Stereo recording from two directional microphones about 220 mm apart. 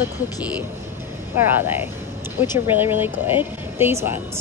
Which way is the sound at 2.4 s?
10° right (ahead or behind).